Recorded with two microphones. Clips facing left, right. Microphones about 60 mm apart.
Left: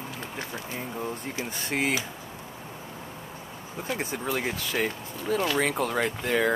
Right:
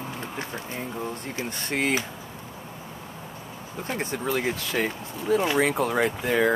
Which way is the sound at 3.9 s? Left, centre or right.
Centre.